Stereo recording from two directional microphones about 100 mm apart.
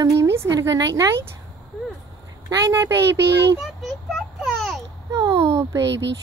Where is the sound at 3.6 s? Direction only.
Centre (ahead or behind).